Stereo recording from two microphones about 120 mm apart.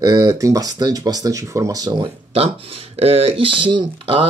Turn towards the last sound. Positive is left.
turn(degrees=-45)  # may be behind; listen again after turning